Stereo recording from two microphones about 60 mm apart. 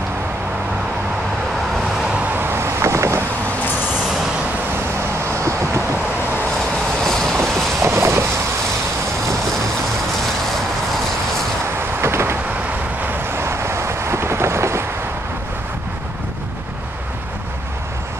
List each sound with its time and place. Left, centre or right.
2.3 s vehicle: right
5.2 s vehicle: right
7.0 s vehicle: centre
7.8 s a sound: right
12.0 s vehicle: right
13.4 s vehicle: right